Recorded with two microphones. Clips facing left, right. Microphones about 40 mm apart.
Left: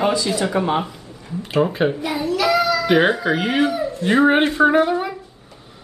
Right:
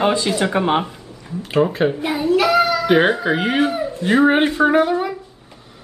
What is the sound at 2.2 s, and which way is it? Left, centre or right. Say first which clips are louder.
Child singing: right 3 dB; right.